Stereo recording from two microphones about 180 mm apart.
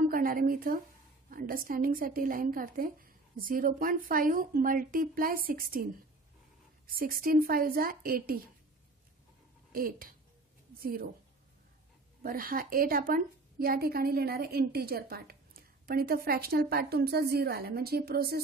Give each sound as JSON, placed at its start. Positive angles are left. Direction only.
{"t": 0.1, "sound": "a woman's voice", "side_deg": -50}
{"t": 6.9, "sound": "a woman's voice", "side_deg": -55}
{"t": 9.7, "sound": "a woman's voice", "side_deg": -50}
{"t": 12.2, "sound": "a woman's voice", "side_deg": -55}